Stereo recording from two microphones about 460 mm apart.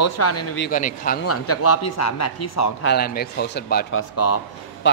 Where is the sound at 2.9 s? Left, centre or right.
Left.